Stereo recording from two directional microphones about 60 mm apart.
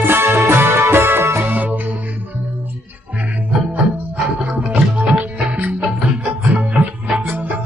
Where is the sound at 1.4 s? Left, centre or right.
Right.